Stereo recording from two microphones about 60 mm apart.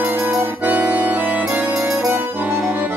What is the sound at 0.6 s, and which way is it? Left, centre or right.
Accordion, right.